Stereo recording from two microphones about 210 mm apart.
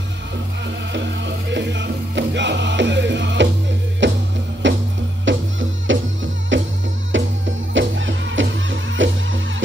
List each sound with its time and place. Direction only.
0.9 s music: 55° right (ahead or behind)